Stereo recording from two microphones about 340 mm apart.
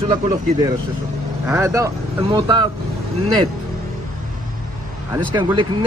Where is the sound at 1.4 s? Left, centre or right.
Centre.